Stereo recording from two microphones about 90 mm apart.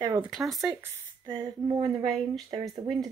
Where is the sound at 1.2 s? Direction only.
50° right (ahead or behind).